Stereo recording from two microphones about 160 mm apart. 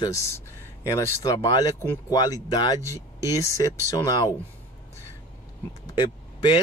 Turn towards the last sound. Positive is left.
turn(degrees=25)  # may be behind; listen again after turning